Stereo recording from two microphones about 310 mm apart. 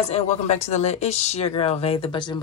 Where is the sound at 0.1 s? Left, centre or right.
Left.